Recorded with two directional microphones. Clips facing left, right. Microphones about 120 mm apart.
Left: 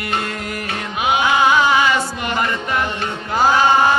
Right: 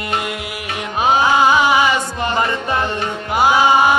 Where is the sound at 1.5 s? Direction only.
15° right (ahead or behind).